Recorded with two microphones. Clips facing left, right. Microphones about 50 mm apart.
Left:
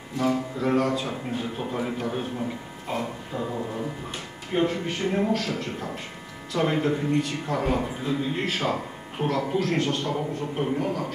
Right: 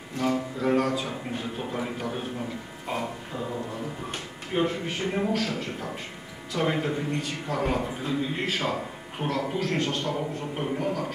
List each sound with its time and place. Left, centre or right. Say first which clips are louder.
0.2 s a man's voice: left 1 dB; centre
4.6 s a man's voice: left 2 dB; centre
6.5 s a man's voice: left 3 dB; centre